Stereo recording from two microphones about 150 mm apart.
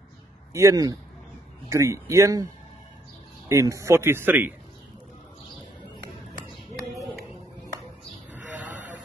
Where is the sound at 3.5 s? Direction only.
20° right (ahead or behind).